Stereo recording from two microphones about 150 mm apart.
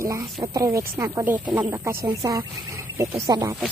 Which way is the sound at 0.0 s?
25° right (ahead or behind).